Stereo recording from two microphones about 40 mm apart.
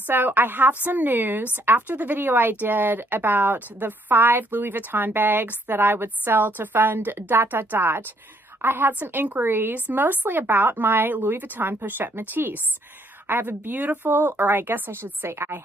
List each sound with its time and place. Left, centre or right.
0.0 s a woman's voice: right
1.8 s speech: right
2.1 s a woman's voice: right
8.5 s speech: right
15.2 s a woman's voice: right